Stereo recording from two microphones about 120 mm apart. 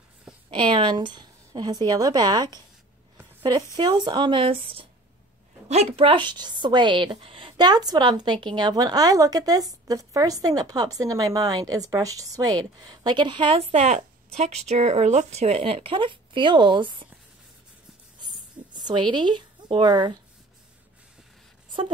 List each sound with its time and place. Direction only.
0.5 s a woman's voice: 45° right (ahead or behind)
3.7 s speech: 40° right (ahead or behind)
5.7 s a woman's voice: 60° right (ahead or behind); by 13.6 s 40° right (ahead or behind)
13.6 s speech: 60° right (ahead or behind); by 17.1 s 40° right (ahead or behind)
18.2 s a sound: 35° right (ahead or behind)